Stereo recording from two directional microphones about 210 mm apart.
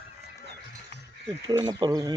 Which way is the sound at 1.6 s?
20° right (ahead or behind).